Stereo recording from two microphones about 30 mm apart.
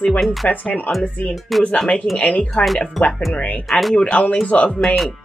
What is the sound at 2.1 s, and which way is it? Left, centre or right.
Speech, left.